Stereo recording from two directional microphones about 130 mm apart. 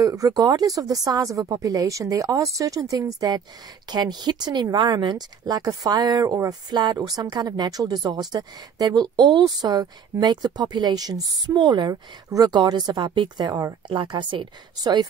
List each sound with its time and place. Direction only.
0.0 s speech: 25° right (ahead or behind)
13.5 s speech: 25° right (ahead or behind)
13.8 s speech: 35° right (ahead or behind)